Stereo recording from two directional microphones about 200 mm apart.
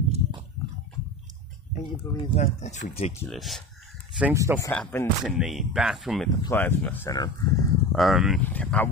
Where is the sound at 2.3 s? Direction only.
35° left (ahead or behind).